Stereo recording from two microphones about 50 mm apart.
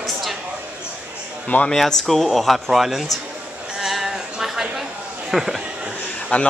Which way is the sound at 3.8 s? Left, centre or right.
Centre.